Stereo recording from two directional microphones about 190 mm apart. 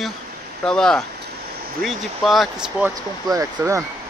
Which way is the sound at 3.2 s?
15° right (ahead or behind).